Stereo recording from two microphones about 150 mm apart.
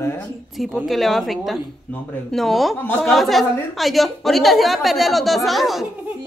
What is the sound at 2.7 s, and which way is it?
Speech, 15° left (ahead or behind).